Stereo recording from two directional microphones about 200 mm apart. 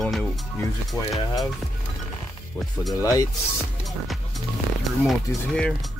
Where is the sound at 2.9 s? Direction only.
15° left (ahead or behind).